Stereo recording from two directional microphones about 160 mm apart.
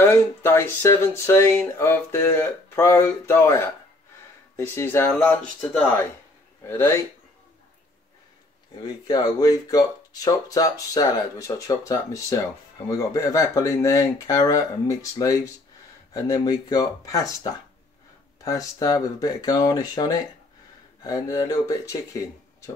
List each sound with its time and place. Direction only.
0.0 s speech: 15° left (ahead or behind)
8.8 s speech: 25° left (ahead or behind)